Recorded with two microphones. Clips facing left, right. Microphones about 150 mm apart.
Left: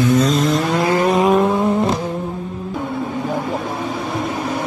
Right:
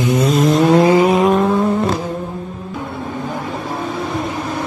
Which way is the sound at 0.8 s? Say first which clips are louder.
Right 5 dB; 15° right (ahead or behind).